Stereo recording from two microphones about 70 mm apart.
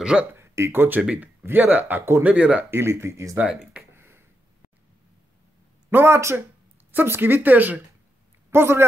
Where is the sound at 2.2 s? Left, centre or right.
Centre.